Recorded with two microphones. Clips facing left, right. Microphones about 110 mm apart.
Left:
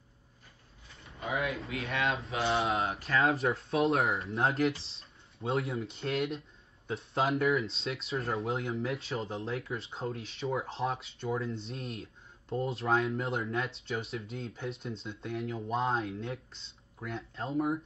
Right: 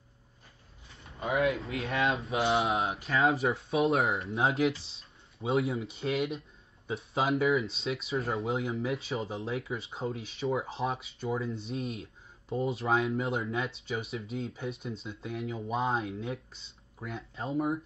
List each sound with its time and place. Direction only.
0.9 s a sound: 30° right (ahead or behind)
1.7 s speech: 30° right (ahead or behind)
2.6 s speech: centre (ahead or behind)